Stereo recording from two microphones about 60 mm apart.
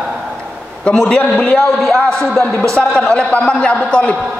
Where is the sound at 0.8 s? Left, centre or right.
Centre.